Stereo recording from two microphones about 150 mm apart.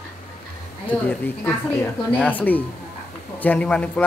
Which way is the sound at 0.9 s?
10° left (ahead or behind).